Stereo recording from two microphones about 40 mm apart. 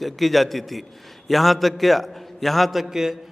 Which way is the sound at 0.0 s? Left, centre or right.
Centre.